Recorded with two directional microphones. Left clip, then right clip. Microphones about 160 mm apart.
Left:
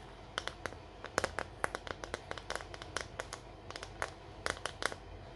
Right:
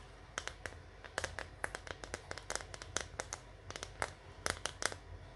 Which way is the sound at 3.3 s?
45° right (ahead or behind).